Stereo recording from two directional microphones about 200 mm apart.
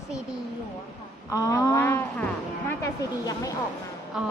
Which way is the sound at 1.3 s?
15° left (ahead or behind).